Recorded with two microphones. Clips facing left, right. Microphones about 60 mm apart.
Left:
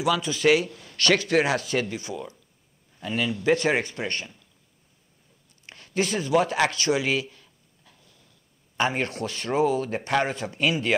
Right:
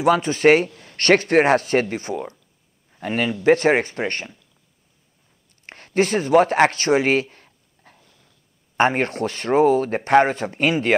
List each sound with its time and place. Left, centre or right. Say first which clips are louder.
0.0 s a man's voice: right 6 dB; right
5.7 s a man's voice: right 7 dB; right